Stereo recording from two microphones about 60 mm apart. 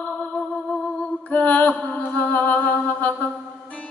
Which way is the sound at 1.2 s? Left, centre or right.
Left.